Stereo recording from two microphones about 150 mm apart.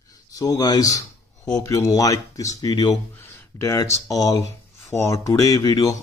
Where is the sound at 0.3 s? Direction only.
25° left (ahead or behind).